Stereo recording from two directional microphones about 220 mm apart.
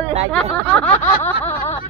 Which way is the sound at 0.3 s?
5° left (ahead or behind).